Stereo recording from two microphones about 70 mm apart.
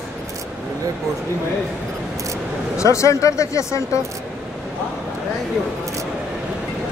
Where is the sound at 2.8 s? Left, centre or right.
Left.